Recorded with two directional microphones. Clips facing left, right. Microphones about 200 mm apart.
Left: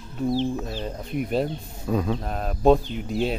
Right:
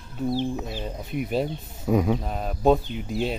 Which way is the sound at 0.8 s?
Centre (ahead or behind).